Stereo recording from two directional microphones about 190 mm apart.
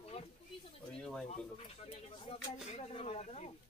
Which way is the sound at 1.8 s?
30° left (ahead or behind).